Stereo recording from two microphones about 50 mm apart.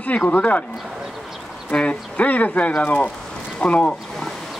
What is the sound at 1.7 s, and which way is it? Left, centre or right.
A man's voice, left.